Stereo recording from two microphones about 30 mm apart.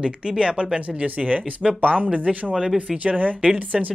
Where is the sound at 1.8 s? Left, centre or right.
Right.